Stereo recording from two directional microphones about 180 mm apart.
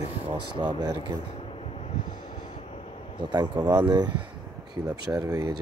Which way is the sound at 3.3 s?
25° right (ahead or behind).